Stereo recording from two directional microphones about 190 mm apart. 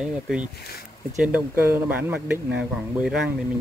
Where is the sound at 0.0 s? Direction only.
5° right (ahead or behind).